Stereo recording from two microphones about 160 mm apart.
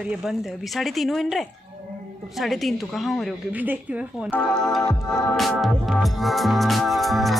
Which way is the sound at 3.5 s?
10° right (ahead or behind).